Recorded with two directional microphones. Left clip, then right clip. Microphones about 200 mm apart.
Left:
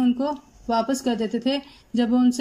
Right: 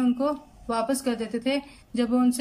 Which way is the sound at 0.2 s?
15° left (ahead or behind).